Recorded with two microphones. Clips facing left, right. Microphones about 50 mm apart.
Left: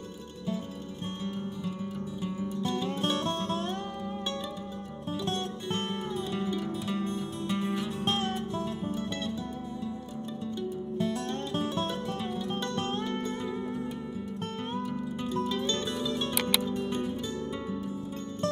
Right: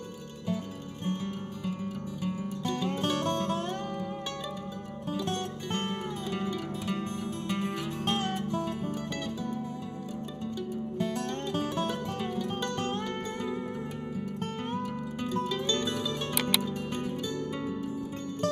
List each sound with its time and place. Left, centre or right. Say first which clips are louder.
6.6 s music: left 1 dB; right
14.7 s music: even; right
16.3 s music: right 2 dB; centre